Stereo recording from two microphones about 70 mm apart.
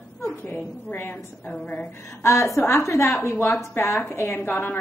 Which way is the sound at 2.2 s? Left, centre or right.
Left.